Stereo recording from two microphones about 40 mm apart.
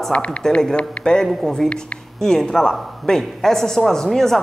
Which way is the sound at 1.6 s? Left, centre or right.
Centre.